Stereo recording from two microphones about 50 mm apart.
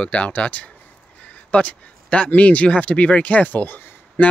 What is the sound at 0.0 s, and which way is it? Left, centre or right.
Speech, left.